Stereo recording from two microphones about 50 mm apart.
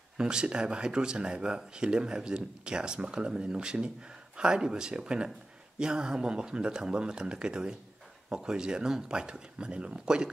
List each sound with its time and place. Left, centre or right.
0.2 s speech: centre